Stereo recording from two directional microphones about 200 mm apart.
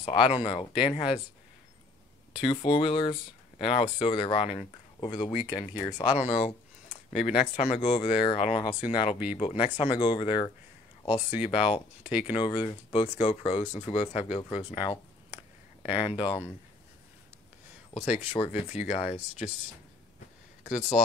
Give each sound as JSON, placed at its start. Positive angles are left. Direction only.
{"t": 0.0, "sound": "speech", "side_deg": 25}
{"t": 2.3, "sound": "speech", "side_deg": 25}
{"t": 6.1, "sound": "a sound", "side_deg": 35}
{"t": 7.2, "sound": "speech", "side_deg": 35}
{"t": 12.0, "sound": "speech", "side_deg": -5}
{"t": 12.3, "sound": "speech", "side_deg": 20}
{"t": 18.0, "sound": "speech", "side_deg": 30}
{"t": 20.6, "sound": "speech", "side_deg": 40}